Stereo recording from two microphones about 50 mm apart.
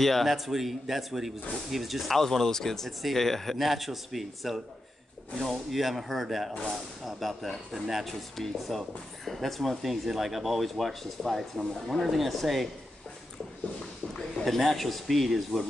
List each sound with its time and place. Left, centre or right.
0.0 s speech: centre
14.4 s speech: centre